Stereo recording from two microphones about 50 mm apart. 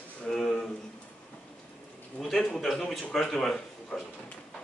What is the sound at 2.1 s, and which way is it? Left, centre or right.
A man's voice, centre.